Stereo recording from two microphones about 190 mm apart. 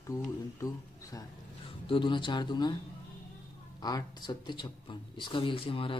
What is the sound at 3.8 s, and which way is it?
A man's voice, 20° left (ahead or behind).